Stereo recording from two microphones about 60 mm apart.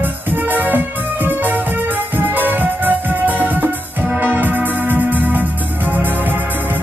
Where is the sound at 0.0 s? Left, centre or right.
Right.